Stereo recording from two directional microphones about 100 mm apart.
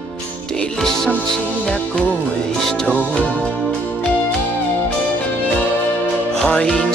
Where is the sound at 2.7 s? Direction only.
10° left (ahead or behind).